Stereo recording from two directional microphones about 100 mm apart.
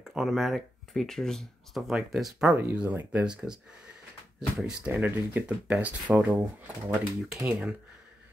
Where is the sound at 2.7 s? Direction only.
15° right (ahead or behind).